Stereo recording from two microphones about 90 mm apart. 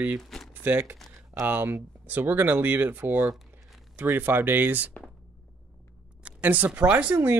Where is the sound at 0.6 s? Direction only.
20° right (ahead or behind).